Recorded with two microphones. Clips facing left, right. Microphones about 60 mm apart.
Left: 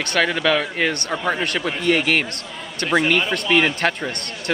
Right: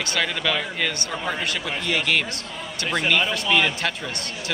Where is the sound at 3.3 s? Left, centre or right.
Left.